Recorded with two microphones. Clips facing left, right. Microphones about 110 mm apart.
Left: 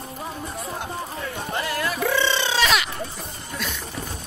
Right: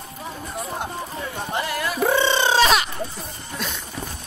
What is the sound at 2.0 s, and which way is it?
Bird, 40° right (ahead or behind).